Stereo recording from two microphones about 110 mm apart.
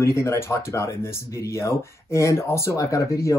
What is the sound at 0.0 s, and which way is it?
Speech, 25° left (ahead or behind).